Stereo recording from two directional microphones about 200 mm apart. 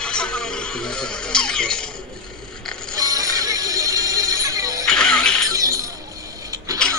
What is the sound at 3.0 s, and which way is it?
Music, 15° right (ahead or behind).